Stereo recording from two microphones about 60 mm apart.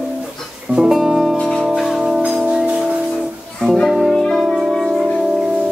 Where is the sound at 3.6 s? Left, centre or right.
Centre.